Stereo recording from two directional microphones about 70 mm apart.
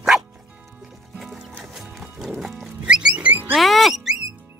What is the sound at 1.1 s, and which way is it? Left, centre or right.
Music, centre.